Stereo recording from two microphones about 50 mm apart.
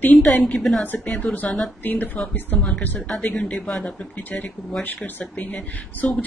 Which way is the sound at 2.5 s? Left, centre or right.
Centre.